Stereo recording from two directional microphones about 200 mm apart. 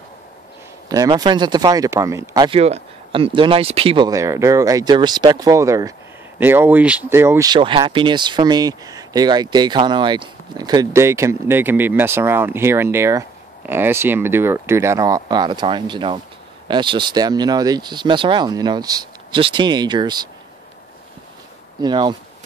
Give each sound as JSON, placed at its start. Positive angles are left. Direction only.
{"t": 0.8, "sound": "speech", "side_deg": -20}
{"t": 21.8, "sound": "speech", "side_deg": -25}